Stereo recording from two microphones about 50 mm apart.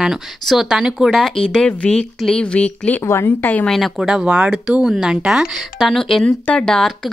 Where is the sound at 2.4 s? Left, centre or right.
Left.